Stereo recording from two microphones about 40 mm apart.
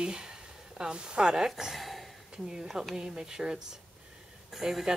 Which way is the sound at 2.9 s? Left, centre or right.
Centre.